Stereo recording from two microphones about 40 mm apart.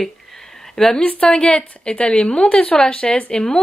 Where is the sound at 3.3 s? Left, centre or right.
Centre.